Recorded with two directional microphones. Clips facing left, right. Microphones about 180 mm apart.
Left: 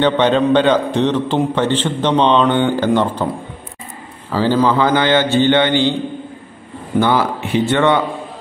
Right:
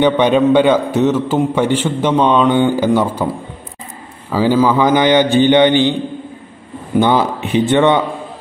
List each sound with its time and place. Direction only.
0.0 s a man's voice: 10° right (ahead or behind)
4.3 s a man's voice: 10° right (ahead or behind)
7.0 s speech: 20° right (ahead or behind)